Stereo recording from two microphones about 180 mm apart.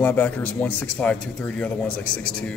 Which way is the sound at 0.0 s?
10° left (ahead or behind).